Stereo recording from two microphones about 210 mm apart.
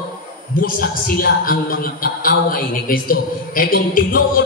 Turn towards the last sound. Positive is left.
turn(degrees=45)  # may be behind; listen again after turning